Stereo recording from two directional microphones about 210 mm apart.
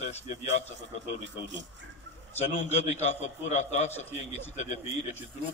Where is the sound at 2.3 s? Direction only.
30° left (ahead or behind).